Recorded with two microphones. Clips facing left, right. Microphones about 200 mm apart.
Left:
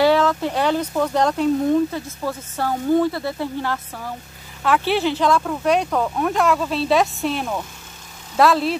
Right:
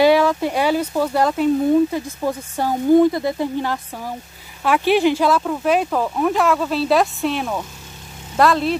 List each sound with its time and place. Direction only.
0.0 s speech: 10° right (ahead or behind)
2.0 s speech: 15° right (ahead or behind); by 8.7 s centre (ahead or behind)